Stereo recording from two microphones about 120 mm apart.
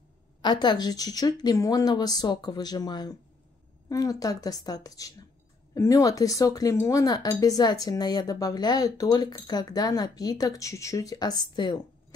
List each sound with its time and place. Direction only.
0.4 s speech: 35° left (ahead or behind)